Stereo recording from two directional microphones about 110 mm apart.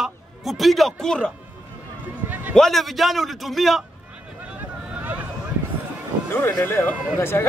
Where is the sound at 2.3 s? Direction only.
15° right (ahead or behind).